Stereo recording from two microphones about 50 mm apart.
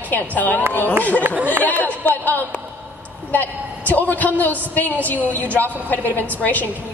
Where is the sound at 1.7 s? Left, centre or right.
Left.